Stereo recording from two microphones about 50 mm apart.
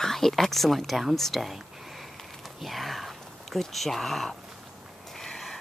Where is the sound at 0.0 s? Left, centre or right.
Centre.